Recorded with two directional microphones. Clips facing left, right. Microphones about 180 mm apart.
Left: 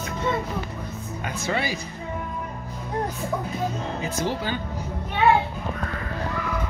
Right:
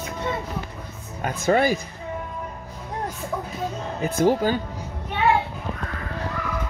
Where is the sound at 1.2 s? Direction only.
50° right (ahead or behind).